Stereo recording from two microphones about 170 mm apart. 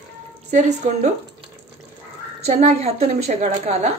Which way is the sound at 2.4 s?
40° right (ahead or behind).